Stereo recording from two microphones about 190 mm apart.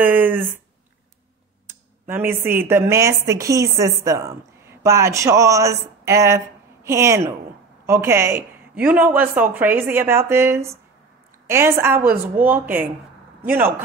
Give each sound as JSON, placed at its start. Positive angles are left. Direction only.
{"t": 0.0, "sound": "speech", "side_deg": -10}
{"t": 1.7, "sound": "a woman's voice", "side_deg": -10}